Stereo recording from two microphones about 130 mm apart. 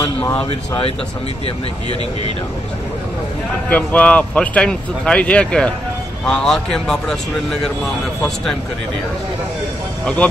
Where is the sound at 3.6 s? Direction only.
10° left (ahead or behind).